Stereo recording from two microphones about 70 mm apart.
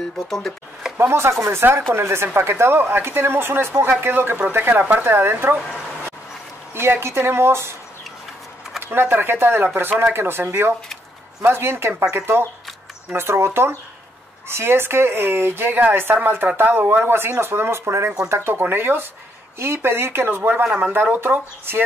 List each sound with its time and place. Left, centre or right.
0.9 s a woman's voice: right
6.7 s a woman's voice: right
8.7 s a woman's voice: right
20.6 s speech: centre
20.9 s a woman's voice: right